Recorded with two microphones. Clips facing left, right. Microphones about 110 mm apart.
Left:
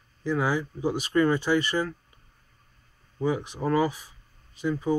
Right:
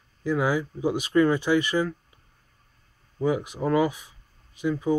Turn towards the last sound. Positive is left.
turn(degrees=-5)  # may be behind; listen again after turning